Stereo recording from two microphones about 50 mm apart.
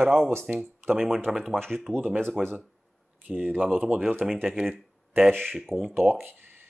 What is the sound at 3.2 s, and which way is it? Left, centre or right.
Speech, right.